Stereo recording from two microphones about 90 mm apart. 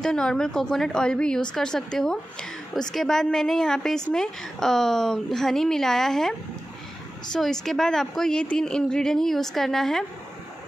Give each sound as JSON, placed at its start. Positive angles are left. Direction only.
{"t": 0.0, "sound": "a woman's voice", "side_deg": 5}
{"t": 7.3, "sound": "a woman's voice", "side_deg": 5}